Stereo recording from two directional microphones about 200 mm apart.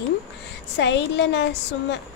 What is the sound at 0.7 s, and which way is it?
A woman's voice, 60° left (ahead or behind).